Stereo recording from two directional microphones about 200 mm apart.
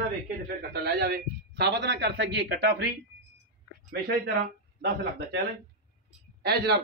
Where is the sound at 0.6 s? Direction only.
55° right (ahead or behind).